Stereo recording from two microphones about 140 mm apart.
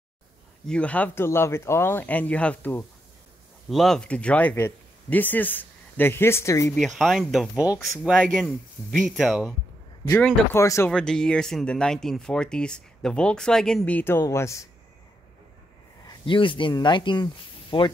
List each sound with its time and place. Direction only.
0.7 s speech: 10° left (ahead or behind)
6.7 s speech: centre (ahead or behind)
10.5 s speech: 20° left (ahead or behind)
10.9 s speech: 5° left (ahead or behind); by 14.7 s 20° left (ahead or behind)
16.1 s speech: 35° left (ahead or behind)